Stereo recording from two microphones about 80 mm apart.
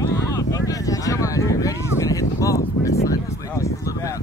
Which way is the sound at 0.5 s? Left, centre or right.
Left.